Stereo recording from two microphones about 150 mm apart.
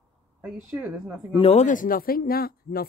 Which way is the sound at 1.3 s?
40° left (ahead or behind).